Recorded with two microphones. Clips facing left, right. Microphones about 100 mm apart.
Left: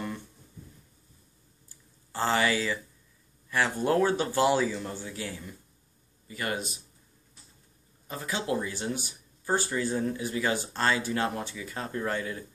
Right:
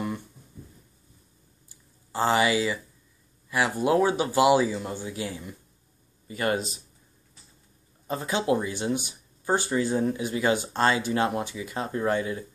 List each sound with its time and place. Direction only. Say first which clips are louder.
1.7 s a sound: right 6 dB; 15° right (ahead or behind)
3.4 s speech: right 2 dB; 10° right (ahead or behind)
6.2 s a man's voice: right 6 dB; 25° right (ahead or behind)
8.1 s speech: right 6 dB; 20° right (ahead or behind)